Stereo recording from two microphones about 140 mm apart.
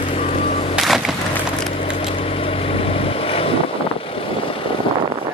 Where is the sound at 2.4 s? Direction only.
40° left (ahead or behind).